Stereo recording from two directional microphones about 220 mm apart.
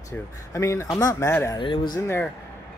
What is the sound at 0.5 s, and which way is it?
Speech, 15° left (ahead or behind).